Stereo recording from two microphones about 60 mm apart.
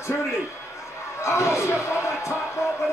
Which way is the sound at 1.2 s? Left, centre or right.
Left.